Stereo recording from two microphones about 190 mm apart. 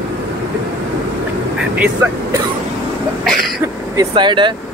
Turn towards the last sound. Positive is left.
turn(degrees=-25)  # may be behind; listen again after turning